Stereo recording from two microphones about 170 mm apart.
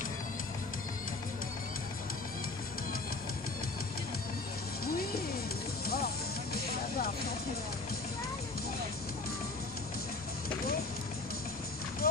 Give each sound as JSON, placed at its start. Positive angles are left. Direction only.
{"t": 12.0, "sound": "clip-clop", "side_deg": 65}